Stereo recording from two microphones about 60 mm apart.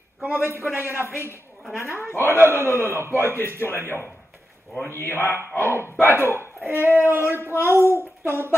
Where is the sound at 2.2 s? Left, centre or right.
Left.